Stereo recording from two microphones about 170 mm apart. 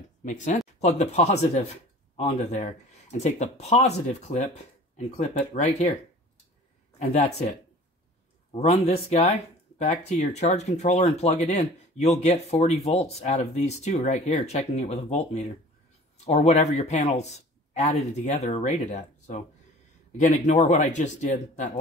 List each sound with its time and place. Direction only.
0.2 s speech: 45° left (ahead or behind)
7.0 s speech: 40° left (ahead or behind)